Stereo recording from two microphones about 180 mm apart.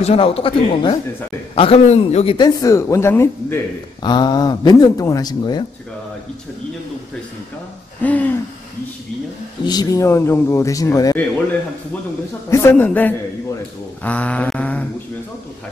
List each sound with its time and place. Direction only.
0.0 s speech: 35° left (ahead or behind); by 3.5 s 15° left (ahead or behind)
4.0 s speech: 25° left (ahead or behind)
8.0 s hoot: 10° left (ahead or behind)
9.7 s speech: 20° left (ahead or behind)
12.4 s speech: 15° left (ahead or behind)
14.0 s a sound: 10° left (ahead or behind)